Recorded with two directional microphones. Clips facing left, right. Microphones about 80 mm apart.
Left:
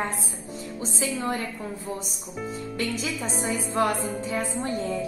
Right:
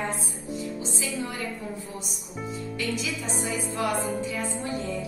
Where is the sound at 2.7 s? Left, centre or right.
Left.